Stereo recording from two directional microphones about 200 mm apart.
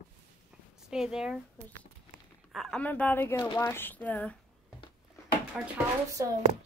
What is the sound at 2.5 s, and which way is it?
Speech, centre (ahead or behind).